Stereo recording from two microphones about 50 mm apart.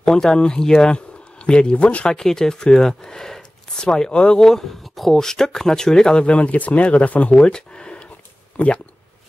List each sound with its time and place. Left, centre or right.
0.0 s speech: centre
2.0 s speech: centre